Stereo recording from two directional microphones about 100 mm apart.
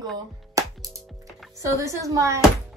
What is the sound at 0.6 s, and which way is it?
Music, 35° right (ahead or behind).